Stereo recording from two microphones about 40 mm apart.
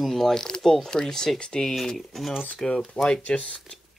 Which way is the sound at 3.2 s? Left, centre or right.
Left.